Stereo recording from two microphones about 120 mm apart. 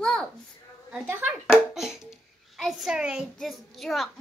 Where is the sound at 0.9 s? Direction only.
15° right (ahead or behind).